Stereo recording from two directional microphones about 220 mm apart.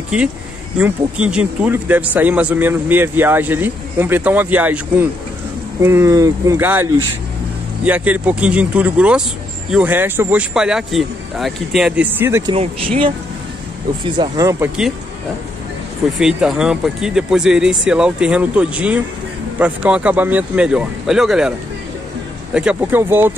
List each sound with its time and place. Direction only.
0.1 s speech: 5° right (ahead or behind)
12.5 s speech: 25° right (ahead or behind)
16.2 s speech: 5° right (ahead or behind)